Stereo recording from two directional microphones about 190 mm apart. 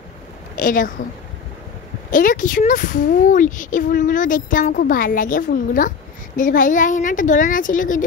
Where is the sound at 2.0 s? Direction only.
45° left (ahead or behind).